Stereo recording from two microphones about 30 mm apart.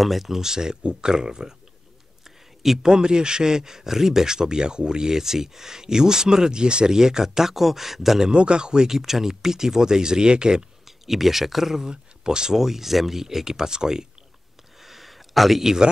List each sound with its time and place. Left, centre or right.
0.0 s speech: centre
0.4 s speech: centre
2.2 s a sound: centre
2.8 s speech: right
7.0 s speech: centre
8.3 s speech: right
8.8 s speech: centre; by 10.6 s right
10.9 s speech: centre
11.9 s speech: right
12.5 s speech: centre
14.8 s a sound: centre
15.6 s speech: centre